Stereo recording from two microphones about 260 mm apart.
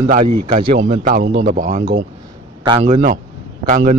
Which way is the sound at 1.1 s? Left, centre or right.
Right.